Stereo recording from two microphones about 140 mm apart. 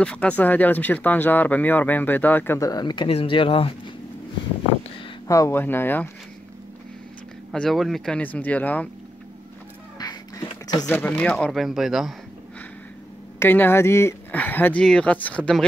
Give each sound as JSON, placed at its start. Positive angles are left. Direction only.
{"t": 0.0, "sound": "speech", "side_deg": 10}
{"t": 2.7, "sound": "speech", "side_deg": 30}
{"t": 3.1, "sound": "speech", "side_deg": 40}
{"t": 5.3, "sound": "speech", "side_deg": 20}
{"t": 7.5, "sound": "speech", "side_deg": 0}
{"t": 9.9, "sound": "music", "side_deg": 30}
{"t": 10.9, "sound": "a man's voice", "side_deg": 15}
{"t": 13.4, "sound": "speech", "side_deg": 15}